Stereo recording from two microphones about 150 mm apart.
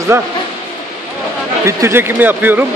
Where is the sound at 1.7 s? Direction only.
20° right (ahead or behind).